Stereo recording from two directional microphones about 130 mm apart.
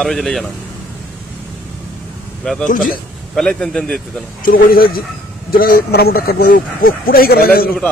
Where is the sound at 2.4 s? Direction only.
5° left (ahead or behind).